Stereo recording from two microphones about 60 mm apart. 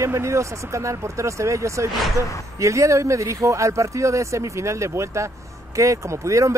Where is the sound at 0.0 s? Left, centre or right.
Right.